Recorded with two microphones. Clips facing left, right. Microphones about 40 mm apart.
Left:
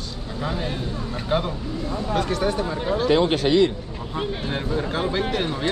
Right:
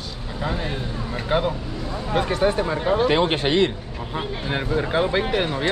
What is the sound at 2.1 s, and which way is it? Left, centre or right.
A man's voice, right.